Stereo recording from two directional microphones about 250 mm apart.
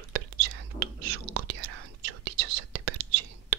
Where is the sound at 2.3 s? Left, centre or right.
Right.